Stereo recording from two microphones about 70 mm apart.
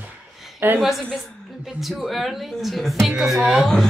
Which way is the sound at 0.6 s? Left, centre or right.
Right.